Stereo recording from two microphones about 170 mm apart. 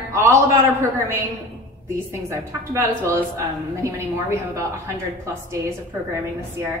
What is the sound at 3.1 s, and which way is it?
Speech, 15° right (ahead or behind).